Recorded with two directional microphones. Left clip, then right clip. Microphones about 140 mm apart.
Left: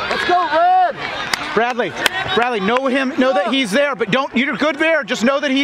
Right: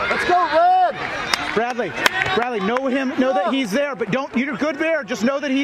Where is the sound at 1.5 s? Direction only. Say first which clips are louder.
Left 4 dB; 40° left (ahead or behind).